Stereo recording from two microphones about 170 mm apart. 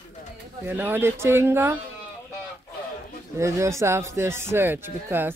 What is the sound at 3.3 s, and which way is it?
Speech, 15° right (ahead or behind).